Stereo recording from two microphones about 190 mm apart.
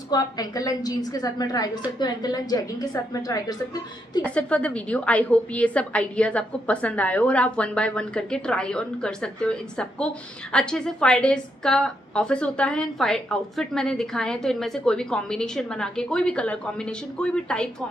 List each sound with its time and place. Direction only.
0.1 s a woman's voice: 20° left (ahead or behind)
4.2 s a woman's voice: 5° left (ahead or behind)